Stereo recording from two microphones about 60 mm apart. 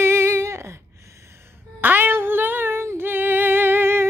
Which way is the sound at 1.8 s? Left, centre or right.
Right.